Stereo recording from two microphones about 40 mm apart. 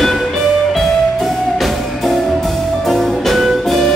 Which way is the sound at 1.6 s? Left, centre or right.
Centre.